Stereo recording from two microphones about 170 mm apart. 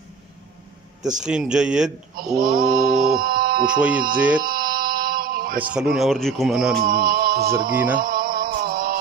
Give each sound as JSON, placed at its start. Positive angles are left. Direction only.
{"t": 1.2, "sound": "speech", "side_deg": -5}
{"t": 2.3, "sound": "speech", "side_deg": -55}
{"t": 3.9, "sound": "music", "side_deg": -55}
{"t": 4.4, "sound": "a sound", "side_deg": -60}
{"t": 5.6, "sound": "speech", "side_deg": -5}
{"t": 6.8, "sound": "music", "side_deg": -60}
{"t": 8.0, "sound": "a sound", "side_deg": -60}